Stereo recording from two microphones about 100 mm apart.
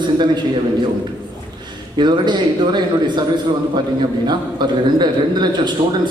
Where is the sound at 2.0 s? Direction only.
50° right (ahead or behind).